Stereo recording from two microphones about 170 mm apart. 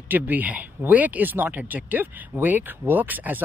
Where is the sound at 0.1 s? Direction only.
10° right (ahead or behind).